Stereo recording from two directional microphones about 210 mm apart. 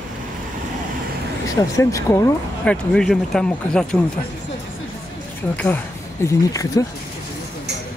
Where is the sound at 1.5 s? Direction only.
15° left (ahead or behind).